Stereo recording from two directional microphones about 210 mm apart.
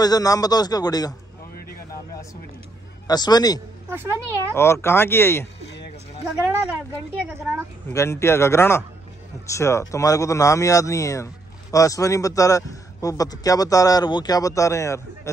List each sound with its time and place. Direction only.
0.0 s a man's voice: 15° left (ahead or behind)
3.1 s a man's voice: 20° left (ahead or behind)
3.9 s a child's voice: 10° right (ahead or behind)
4.8 s a man's voice: 10° left (ahead or behind)
6.2 s a child's voice: 10° right (ahead or behind)
7.9 s a man's voice: 15° left (ahead or behind)